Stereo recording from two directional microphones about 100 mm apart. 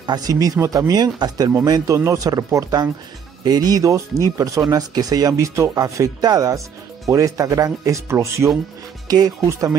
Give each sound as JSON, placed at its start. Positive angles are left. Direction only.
{"t": 0.0, "sound": "speech", "side_deg": -40}
{"t": 9.0, "sound": "speech", "side_deg": -40}
{"t": 9.5, "sound": "speech", "side_deg": -30}